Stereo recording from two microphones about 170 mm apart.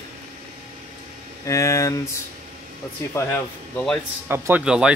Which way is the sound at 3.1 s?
15° left (ahead or behind).